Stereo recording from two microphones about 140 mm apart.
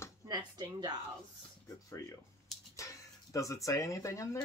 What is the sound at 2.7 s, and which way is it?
Speech, 25° left (ahead or behind).